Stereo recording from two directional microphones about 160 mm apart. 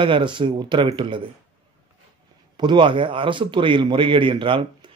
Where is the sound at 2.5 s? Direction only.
30° right (ahead or behind).